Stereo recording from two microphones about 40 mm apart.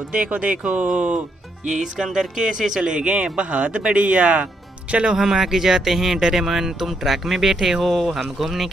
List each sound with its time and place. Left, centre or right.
0.1 s speech: right
1.7 s speech: centre
2.8 s speech: right
5.1 s speech: centre
7.8 s speech: centre